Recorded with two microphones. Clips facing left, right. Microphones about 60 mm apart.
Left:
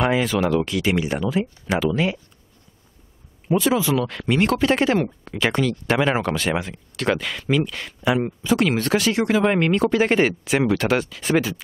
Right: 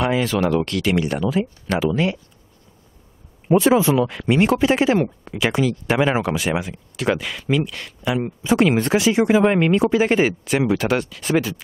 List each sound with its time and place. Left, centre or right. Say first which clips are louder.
0.0 s speech: even; centre
0.7 s speech: right 1 dB; centre
3.5 s speech: right 4 dB; centre
8.4 s speech: right 3 dB; right; by 11.6 s centre